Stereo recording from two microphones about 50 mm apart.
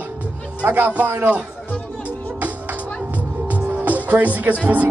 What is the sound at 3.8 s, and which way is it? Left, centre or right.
Music, right.